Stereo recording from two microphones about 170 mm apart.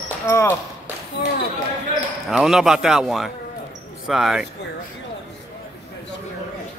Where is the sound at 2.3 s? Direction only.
Centre (ahead or behind).